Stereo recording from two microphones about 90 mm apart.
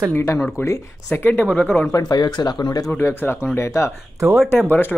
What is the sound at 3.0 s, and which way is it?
Speech, 30° left (ahead or behind).